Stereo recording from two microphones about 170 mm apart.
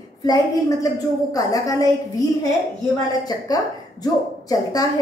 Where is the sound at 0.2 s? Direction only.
20° left (ahead or behind).